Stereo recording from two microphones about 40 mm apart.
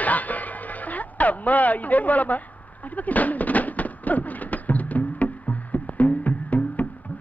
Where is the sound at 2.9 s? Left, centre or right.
Left.